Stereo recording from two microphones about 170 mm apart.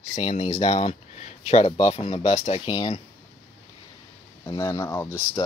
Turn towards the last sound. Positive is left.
turn(degrees=15)  # may be behind; listen again after turning